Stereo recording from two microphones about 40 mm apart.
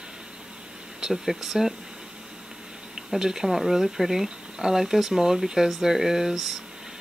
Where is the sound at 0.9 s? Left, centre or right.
Centre.